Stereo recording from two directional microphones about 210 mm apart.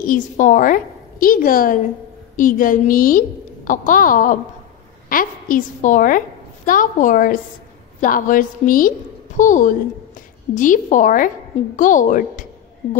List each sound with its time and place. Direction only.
0.0 s a woman's voice: 40° left (ahead or behind)